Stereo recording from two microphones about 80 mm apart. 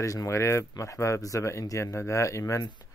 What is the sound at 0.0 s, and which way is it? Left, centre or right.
Speech, left.